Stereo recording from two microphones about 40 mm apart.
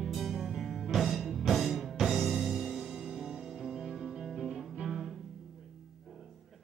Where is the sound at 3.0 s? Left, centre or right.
Centre.